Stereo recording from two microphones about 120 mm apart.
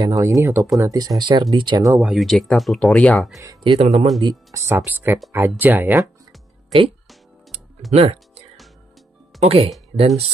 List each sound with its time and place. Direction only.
0.0 s speech: 25° right (ahead or behind)
2.0 s speech: centre (ahead or behind)
3.6 s speech: 55° right (ahead or behind)
4.2 s speech: 35° right (ahead or behind)
4.6 s speech: 20° right (ahead or behind)
7.9 s speech: 60° right (ahead or behind)